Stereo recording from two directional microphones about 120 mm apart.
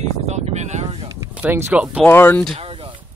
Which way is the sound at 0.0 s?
65° right (ahead or behind).